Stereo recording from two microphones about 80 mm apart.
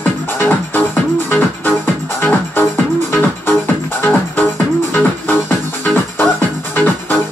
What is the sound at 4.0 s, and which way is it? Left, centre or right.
Music, left.